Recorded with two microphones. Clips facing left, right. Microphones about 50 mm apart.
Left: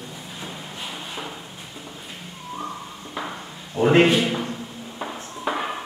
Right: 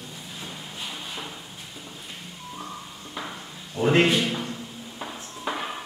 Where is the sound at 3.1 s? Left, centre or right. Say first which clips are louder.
Left 4 dB; centre.